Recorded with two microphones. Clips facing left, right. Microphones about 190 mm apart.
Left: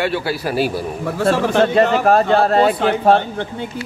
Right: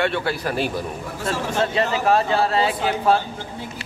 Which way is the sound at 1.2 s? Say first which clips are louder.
Left 9 dB; 70° left (ahead or behind).